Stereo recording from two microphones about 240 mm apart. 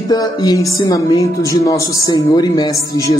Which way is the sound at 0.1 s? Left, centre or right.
Centre.